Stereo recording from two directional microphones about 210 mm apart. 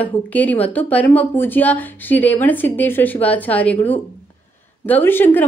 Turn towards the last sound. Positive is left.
turn(degrees=10)  # may be behind; listen again after turning